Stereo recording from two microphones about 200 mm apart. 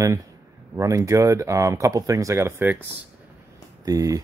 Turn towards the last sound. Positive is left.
turn(degrees=-15)  # may be behind; listen again after turning